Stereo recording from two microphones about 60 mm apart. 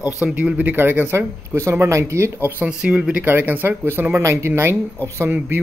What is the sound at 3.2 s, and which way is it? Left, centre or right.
Speech, right.